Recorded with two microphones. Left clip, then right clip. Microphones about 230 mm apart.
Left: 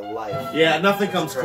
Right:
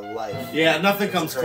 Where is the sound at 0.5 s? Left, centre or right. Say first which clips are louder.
Left 1 dB; centre.